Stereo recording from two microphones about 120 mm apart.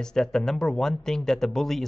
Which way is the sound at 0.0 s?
5° left (ahead or behind).